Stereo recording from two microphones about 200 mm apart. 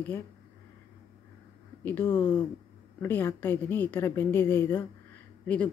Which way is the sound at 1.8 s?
10° left (ahead or behind).